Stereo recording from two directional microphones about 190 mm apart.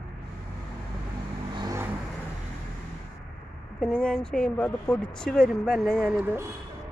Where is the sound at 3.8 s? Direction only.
5° left (ahead or behind); by 6.5 s 10° right (ahead or behind).